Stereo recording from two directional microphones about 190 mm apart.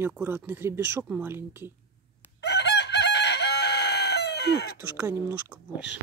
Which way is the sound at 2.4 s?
65° left (ahead or behind).